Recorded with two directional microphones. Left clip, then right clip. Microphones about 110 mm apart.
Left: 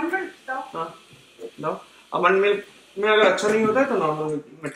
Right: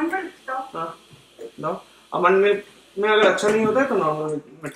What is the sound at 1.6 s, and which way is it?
Speech, centre (ahead or behind).